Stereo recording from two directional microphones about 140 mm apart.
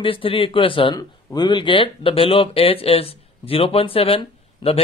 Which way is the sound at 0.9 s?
30° left (ahead or behind).